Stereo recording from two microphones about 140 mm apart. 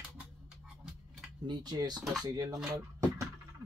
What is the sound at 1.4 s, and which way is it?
Speech, 30° right (ahead or behind).